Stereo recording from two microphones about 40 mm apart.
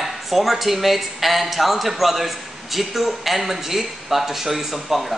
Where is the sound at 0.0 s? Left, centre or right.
Centre.